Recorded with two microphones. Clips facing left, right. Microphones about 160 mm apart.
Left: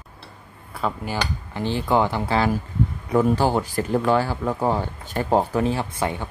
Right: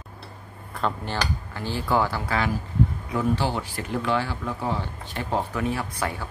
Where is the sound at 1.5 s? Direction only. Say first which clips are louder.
Left 4 dB; 20° left (ahead or behind).